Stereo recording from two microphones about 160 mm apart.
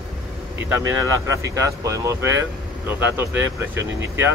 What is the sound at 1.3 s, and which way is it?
Speech, 20° right (ahead or behind).